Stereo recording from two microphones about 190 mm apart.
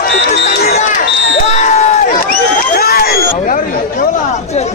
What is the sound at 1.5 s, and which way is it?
Crowd, 35° left (ahead or behind).